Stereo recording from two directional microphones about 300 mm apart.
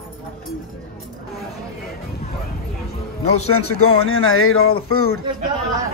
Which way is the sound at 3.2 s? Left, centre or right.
Left.